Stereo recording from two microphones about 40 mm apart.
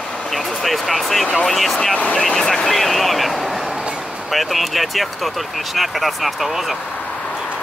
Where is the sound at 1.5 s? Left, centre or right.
Centre.